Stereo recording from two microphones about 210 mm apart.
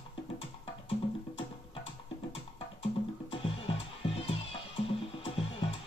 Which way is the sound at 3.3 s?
25° left (ahead or behind).